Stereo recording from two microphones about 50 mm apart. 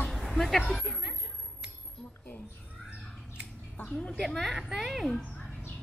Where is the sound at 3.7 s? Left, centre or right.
Left.